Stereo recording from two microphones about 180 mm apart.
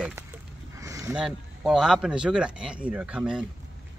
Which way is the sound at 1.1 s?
Centre (ahead or behind).